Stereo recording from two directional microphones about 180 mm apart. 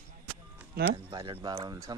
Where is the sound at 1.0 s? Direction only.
25° right (ahead or behind).